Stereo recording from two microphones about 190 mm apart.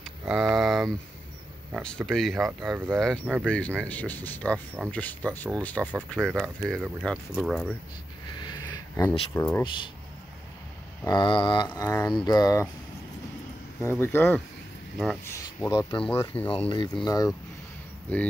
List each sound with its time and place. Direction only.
0.0 s speech: 5° right (ahead or behind)
8.3 s a sound: 25° left (ahead or behind)
9.3 s speech: 15° left (ahead or behind)
11.1 s speech: 25° left (ahead or behind)
13.8 s speech: 10° left (ahead or behind)
16.4 s speech: 25° left (ahead or behind)